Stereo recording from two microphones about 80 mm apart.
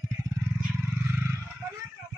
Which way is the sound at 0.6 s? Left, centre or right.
Right.